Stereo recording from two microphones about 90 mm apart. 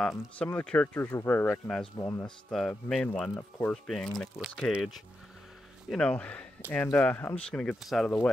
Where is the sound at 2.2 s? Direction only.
5° left (ahead or behind).